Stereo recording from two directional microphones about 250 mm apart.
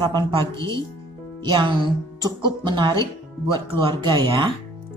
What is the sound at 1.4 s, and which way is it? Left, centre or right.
A woman's voice, centre.